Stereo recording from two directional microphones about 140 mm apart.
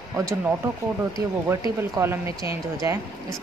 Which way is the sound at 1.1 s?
20° right (ahead or behind).